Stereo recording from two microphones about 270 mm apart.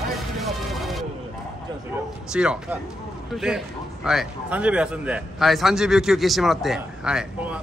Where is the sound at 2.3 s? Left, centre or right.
Centre.